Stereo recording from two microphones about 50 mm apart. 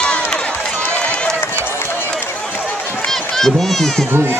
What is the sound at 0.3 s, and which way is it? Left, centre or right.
Run, centre.